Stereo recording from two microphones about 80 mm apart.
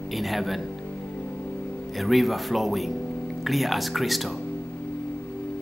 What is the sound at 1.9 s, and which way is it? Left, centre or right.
Speech, centre.